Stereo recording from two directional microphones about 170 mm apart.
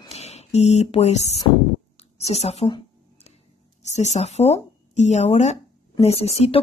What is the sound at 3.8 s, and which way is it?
Speech, 40° left (ahead or behind).